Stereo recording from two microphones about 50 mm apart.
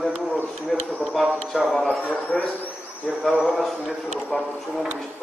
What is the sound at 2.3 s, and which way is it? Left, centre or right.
Speech, left.